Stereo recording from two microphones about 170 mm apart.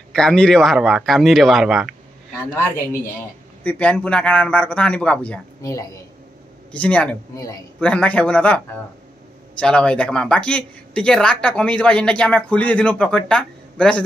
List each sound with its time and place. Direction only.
0.1 s speech: 5° left (ahead or behind)
3.6 s a man's voice: 10° left (ahead or behind)
5.6 s speech: 20° left (ahead or behind)
6.7 s a man's voice: 5° left (ahead or behind)
7.3 s speech: 20° left (ahead or behind)
7.8 s a man's voice: 5° left (ahead or behind)